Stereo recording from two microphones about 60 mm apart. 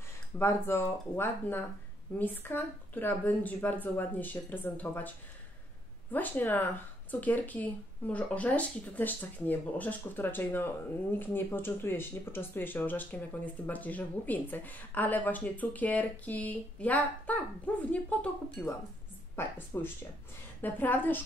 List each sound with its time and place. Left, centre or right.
0.4 s speech: left
6.1 s speech: left
19.3 s speech: left